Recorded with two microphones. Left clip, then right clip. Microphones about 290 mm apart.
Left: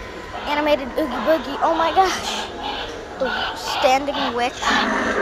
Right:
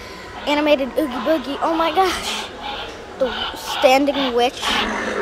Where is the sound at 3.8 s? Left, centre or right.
Centre.